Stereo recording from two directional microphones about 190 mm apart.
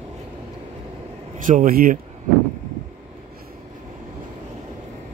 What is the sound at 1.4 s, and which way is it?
Speech, 45° right (ahead or behind).